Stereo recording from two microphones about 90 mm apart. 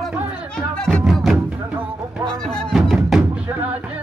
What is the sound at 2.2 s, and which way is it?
Music, 10° left (ahead or behind).